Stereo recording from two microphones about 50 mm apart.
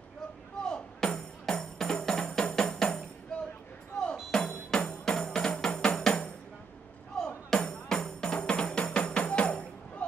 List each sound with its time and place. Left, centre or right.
0.6 s music: centre
2.7 s tambourine: centre
3.3 s a sound: centre
4.0 s music: centre